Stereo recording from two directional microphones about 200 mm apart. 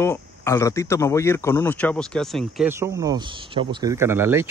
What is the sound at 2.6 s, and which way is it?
Speech, 10° right (ahead or behind).